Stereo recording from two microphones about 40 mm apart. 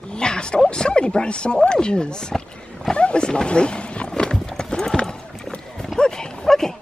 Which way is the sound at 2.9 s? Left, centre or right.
Left.